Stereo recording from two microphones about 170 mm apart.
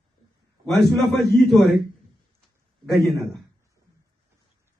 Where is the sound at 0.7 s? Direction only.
Centre (ahead or behind).